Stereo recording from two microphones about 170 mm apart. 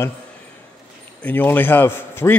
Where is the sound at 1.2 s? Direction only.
10° left (ahead or behind).